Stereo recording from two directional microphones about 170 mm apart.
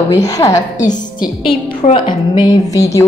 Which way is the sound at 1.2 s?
30° left (ahead or behind).